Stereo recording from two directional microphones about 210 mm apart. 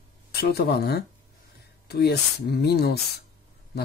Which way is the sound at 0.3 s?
45° left (ahead or behind).